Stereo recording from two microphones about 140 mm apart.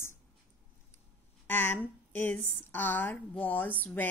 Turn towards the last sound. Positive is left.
turn(degrees=15)  # may be behind; listen again after turning